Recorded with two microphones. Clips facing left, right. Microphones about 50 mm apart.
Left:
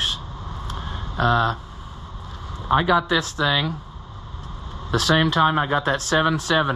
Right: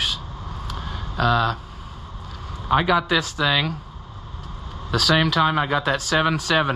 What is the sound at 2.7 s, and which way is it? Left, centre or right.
Speech, right.